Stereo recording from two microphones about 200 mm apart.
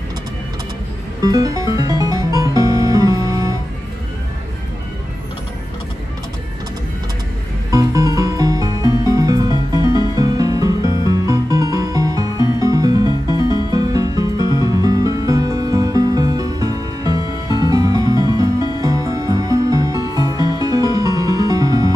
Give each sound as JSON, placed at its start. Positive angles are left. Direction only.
{"t": 1.2, "sound": "music", "side_deg": -20}
{"t": 7.7, "sound": "music", "side_deg": -15}